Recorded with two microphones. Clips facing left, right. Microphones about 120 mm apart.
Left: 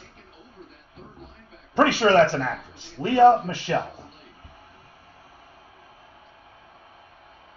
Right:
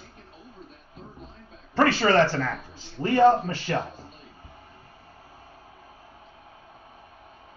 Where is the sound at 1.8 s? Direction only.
15° left (ahead or behind).